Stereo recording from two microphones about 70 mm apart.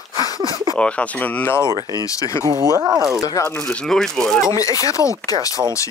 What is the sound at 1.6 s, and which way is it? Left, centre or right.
Speech, right.